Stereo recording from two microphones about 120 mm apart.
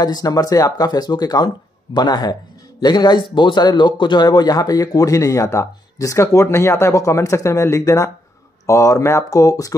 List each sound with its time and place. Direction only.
0.0 s speech: 35° left (ahead or behind)